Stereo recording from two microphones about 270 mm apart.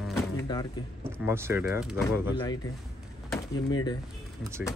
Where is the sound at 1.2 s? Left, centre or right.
Centre.